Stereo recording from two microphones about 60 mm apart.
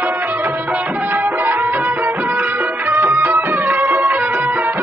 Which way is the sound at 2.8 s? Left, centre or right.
Right.